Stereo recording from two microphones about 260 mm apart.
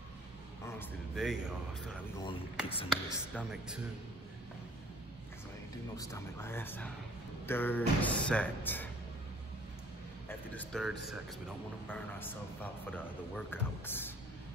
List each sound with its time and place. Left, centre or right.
0.7 s speech: centre
2.2 s speech: left
3.3 s speech: centre
5.9 s speech: centre
10.2 s speech: centre
13.5 s speech: centre